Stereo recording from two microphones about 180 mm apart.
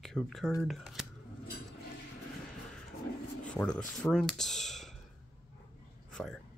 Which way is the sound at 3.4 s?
5° left (ahead or behind).